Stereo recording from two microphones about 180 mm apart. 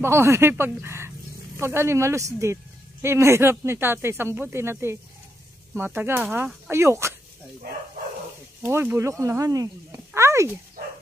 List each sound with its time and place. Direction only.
0.0 s speech: 15° right (ahead or behind)
8.6 s speech: 15° right (ahead or behind)
10.1 s a sound: 15° right (ahead or behind)